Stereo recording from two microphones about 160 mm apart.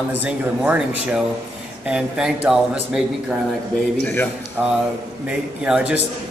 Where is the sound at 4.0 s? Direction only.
10° left (ahead or behind).